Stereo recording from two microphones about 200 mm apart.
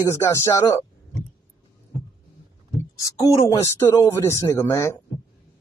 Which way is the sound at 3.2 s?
15° left (ahead or behind).